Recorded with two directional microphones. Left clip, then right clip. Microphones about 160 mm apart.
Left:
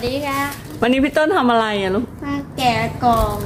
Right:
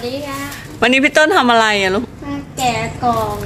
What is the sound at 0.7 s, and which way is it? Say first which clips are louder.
Speech: right 5 dB; centre (ahead or behind).